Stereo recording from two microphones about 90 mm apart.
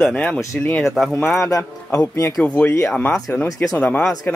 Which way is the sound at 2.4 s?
15° left (ahead or behind).